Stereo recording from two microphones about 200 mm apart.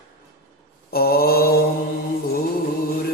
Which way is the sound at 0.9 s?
50° left (ahead or behind).